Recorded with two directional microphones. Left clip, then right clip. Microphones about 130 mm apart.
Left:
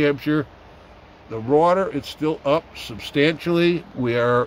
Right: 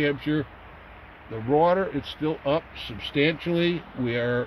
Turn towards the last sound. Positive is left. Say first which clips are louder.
# left 7 dB
turn(degrees=15)  # may be behind; listen again after turning